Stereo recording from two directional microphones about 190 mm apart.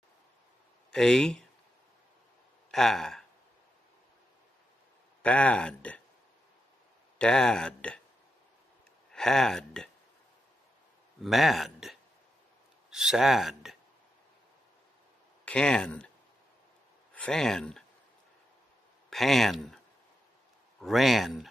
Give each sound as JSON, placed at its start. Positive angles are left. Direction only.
{"t": 0.9, "sound": "speech", "side_deg": 0}
{"t": 2.7, "sound": "speech", "side_deg": 0}
{"t": 5.2, "sound": "speech", "side_deg": 5}
{"t": 7.2, "sound": "speech", "side_deg": 5}
{"t": 9.1, "sound": "speech", "side_deg": 0}
{"t": 11.2, "sound": "speech", "side_deg": 0}
{"t": 15.4, "sound": "speech", "side_deg": 5}
{"t": 17.1, "sound": "speech", "side_deg": 5}
{"t": 19.0, "sound": "speech", "side_deg": 0}
{"t": 20.8, "sound": "speech", "side_deg": 0}